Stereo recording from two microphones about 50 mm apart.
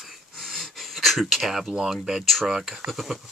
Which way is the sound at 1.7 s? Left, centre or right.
Centre.